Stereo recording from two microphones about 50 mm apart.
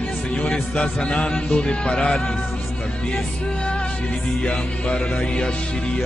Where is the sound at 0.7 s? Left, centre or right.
Left.